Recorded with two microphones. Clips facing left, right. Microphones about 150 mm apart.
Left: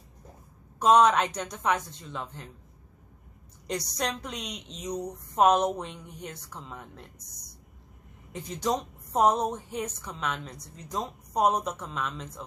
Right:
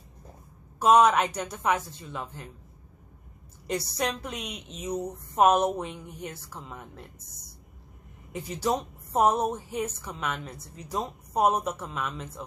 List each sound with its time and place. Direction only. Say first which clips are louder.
0.7 s a woman's voice: right 1 dB; 5° right (ahead or behind)
3.9 s a woman's voice: right 2 dB; 5° right (ahead or behind)
7.2 s speech: right 1 dB; 25° right (ahead or behind)
8.3 s a woman's voice: right 1 dB; 10° right (ahead or behind)